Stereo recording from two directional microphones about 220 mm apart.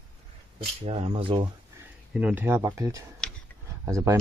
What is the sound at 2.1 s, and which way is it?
Speech, 5° right (ahead or behind).